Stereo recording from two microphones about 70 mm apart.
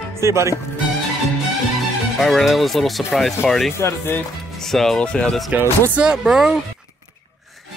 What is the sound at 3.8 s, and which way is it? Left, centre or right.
Speech, left.